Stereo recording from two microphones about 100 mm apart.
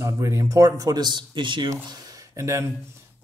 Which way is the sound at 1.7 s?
35° right (ahead or behind).